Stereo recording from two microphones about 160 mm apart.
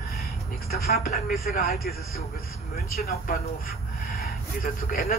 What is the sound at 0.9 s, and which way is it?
A man's voice, 70° left (ahead or behind).